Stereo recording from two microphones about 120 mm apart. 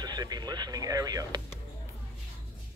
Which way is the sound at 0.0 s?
35° right (ahead or behind).